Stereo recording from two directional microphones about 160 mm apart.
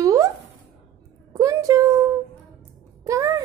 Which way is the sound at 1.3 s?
20° right (ahead or behind).